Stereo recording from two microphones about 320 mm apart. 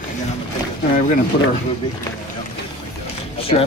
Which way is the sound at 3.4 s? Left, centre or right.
Centre.